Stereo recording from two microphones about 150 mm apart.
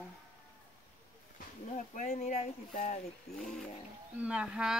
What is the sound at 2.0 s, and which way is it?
Speech, 55° left (ahead or behind).